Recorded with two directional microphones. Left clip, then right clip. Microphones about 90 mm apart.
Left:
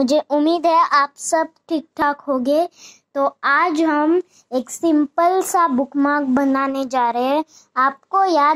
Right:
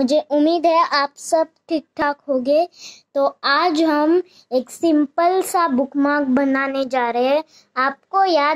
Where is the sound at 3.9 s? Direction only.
40° right (ahead or behind).